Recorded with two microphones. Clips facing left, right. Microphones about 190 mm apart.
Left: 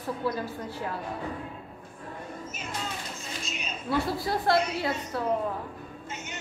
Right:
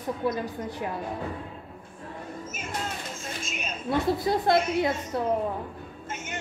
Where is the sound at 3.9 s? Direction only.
20° right (ahead or behind).